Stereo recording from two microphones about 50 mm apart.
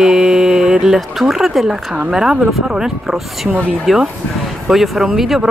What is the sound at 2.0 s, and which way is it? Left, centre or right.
Speech, centre.